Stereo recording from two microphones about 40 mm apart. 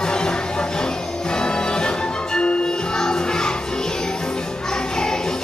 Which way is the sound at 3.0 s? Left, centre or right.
Centre.